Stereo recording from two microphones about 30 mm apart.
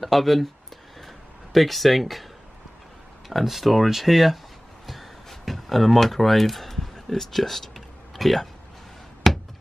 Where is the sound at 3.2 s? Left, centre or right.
Centre.